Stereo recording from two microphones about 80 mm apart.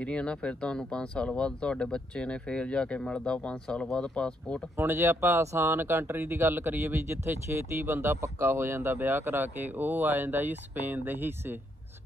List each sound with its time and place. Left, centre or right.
0.0 s speech: centre
4.7 s speech: right